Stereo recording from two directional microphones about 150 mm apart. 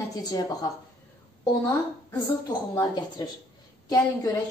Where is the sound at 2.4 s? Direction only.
25° left (ahead or behind).